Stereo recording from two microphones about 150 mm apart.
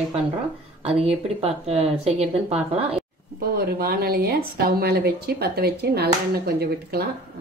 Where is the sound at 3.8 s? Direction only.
90° right.